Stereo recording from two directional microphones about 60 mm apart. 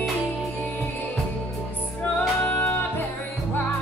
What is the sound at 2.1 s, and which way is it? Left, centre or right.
Music, left.